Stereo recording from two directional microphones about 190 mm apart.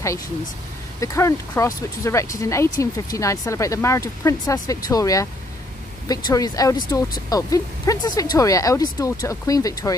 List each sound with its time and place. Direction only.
1.0 s speech: 15° left (ahead or behind)